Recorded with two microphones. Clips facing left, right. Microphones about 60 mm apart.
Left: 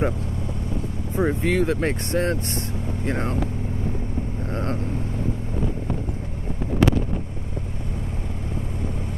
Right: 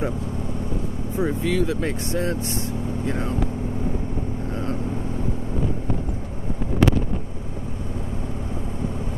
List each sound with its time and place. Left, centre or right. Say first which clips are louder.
1.1 s speech: left 2 dB; left